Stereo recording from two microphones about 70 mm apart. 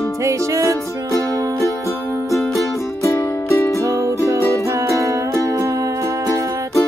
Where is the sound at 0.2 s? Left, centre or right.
Right.